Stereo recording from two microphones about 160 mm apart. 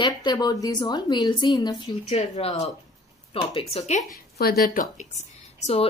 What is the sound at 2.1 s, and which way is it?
Speech, 40° left (ahead or behind).